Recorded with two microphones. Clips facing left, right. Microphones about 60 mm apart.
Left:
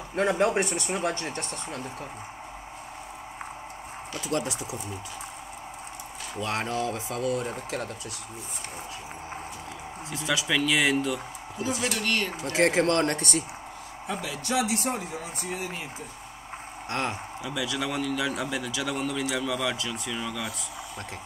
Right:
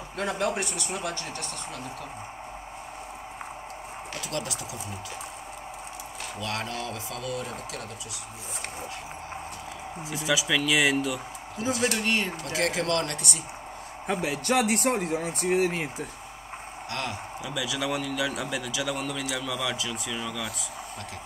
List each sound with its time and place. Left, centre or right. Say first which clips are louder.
0.1 s speech: left 5 dB; left
4.3 s speech: left 5 dB; left
6.4 s speech: left 4 dB; left
10.1 s speech: right 1 dB; centre
12.0 s speech: right 1 dB; centre
12.5 s speech: left 4 dB; left
14.0 s speech: right 5 dB; right
17.4 s speech: even; centre